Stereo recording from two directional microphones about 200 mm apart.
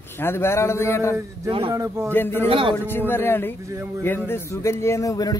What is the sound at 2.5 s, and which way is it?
Speech, 25° right (ahead or behind).